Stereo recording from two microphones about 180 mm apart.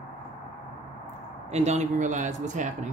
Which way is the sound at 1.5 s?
40° right (ahead or behind).